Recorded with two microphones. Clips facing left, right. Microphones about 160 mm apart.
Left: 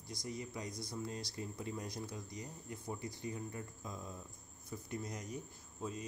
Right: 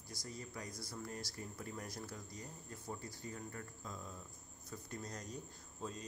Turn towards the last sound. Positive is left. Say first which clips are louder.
# left 3 dB
turn(degrees=10)  # may be behind; listen again after turning